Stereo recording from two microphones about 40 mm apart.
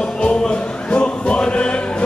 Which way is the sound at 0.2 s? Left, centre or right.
Left.